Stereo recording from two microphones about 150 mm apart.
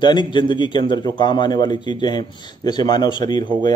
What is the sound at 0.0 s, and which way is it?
A man's voice, 30° left (ahead or behind).